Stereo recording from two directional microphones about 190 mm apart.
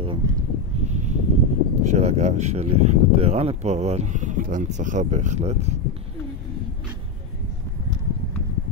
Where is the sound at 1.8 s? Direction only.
35° right (ahead or behind).